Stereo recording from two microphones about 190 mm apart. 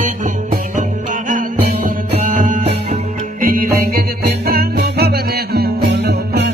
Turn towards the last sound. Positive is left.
turn(degrees=-65)  # may be behind; listen again after turning